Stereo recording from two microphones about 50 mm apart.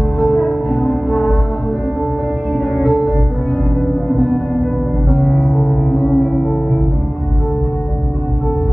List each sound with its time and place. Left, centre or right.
0.3 s music: centre
5.2 s music: centre
5.7 s gong: centre